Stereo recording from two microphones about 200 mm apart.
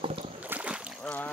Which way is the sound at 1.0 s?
10° left (ahead or behind).